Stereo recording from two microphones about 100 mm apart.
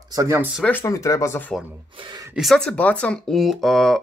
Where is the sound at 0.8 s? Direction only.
30° left (ahead or behind).